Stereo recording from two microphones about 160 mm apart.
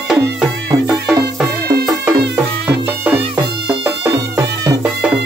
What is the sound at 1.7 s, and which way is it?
Music, 75° right (ahead or behind).